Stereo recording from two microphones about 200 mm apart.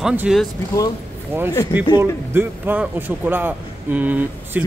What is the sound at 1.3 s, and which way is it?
A man's voice, 10° right (ahead or behind).